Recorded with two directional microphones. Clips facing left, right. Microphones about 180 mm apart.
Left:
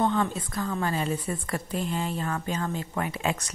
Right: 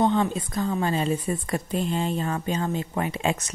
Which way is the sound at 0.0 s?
20° right (ahead or behind).